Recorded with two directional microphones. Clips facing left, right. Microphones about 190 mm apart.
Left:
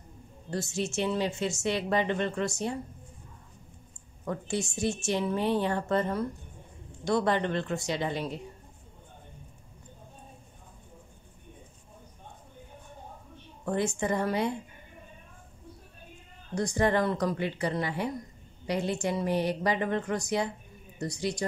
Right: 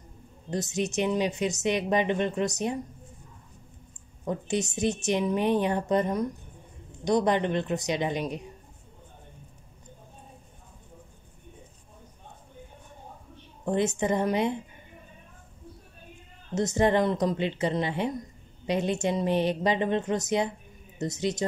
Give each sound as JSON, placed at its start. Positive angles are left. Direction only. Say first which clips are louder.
{"t": 0.5, "sound": "a woman's voice", "louder": "right 3 dB", "side_deg": -20}
{"t": 4.2, "sound": "a woman's voice", "louder": "right 3 dB", "side_deg": -20}
{"t": 13.7, "sound": "a woman's voice", "louder": "right 3 dB", "side_deg": -20}
{"t": 16.5, "sound": "a woman's voice", "louder": "right 3 dB", "side_deg": -20}